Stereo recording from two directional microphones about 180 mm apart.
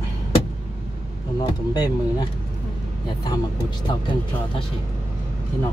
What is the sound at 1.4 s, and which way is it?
Speech, 20° left (ahead or behind).